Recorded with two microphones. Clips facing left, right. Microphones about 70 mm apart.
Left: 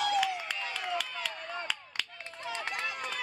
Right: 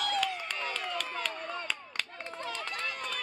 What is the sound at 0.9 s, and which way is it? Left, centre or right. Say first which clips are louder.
Run: right 1 dB; right.